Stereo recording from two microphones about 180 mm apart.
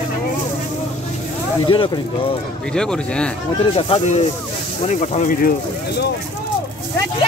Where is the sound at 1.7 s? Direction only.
30° left (ahead or behind).